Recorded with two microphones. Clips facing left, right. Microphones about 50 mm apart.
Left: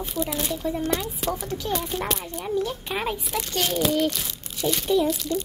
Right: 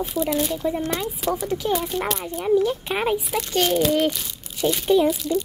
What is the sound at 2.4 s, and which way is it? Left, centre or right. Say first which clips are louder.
Speech: right 9 dB; centre.